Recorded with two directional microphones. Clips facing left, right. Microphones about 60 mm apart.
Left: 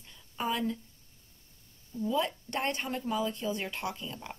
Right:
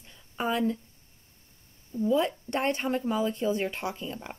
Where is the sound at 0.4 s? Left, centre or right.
Right.